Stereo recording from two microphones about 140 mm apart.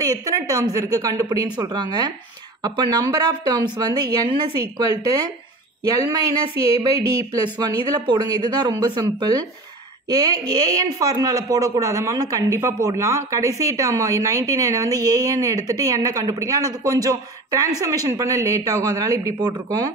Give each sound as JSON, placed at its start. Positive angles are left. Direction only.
{"t": 0.0, "sound": "a woman's voice", "side_deg": -25}
{"t": 5.9, "sound": "a woman's voice", "side_deg": -25}